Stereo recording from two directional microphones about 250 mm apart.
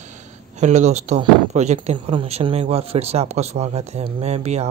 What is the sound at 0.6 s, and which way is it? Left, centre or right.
Speech, right.